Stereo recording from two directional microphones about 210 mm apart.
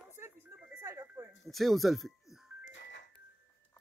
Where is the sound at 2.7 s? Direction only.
60° left (ahead or behind).